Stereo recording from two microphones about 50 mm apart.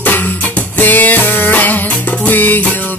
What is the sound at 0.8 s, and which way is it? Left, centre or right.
Music, left.